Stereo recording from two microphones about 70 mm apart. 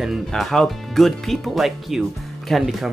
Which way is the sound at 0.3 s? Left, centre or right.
Centre.